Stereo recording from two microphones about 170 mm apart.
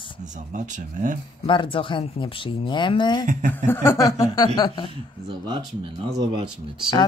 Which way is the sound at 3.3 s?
50° right (ahead or behind).